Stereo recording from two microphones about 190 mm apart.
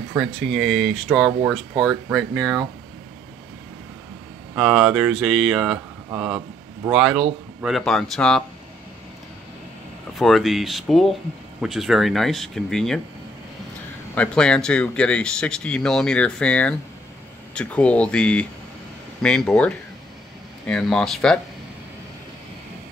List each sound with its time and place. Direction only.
0.1 s speech: centre (ahead or behind)
4.6 s speech: 5° right (ahead or behind)
10.1 s speech: centre (ahead or behind)
14.1 s speech: 5° left (ahead or behind)